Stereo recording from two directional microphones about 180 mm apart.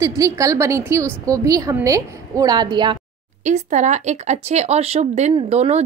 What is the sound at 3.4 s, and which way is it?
Speech, 40° right (ahead or behind).